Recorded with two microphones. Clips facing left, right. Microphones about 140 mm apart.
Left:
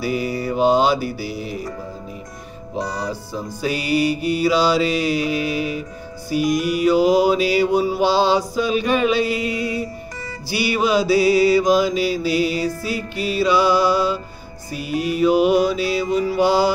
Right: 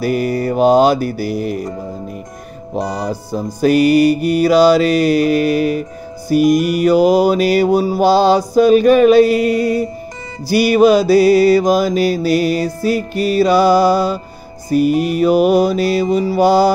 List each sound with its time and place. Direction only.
0.0 s music: 55° right (ahead or behind)
2.8 s music: 45° right (ahead or behind)